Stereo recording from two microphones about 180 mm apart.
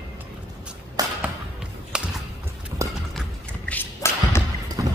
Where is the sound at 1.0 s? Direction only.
20° right (ahead or behind).